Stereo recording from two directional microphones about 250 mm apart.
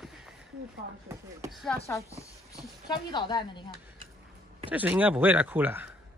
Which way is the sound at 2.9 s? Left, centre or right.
Centre.